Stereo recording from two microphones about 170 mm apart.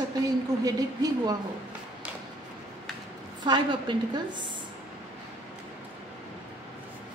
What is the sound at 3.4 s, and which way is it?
Speech, 25° right (ahead or behind).